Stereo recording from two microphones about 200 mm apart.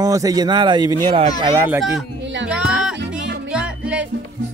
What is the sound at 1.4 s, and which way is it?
Speech, 15° right (ahead or behind).